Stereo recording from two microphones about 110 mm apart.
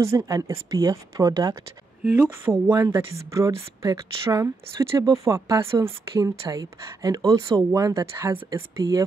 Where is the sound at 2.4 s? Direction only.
20° right (ahead or behind).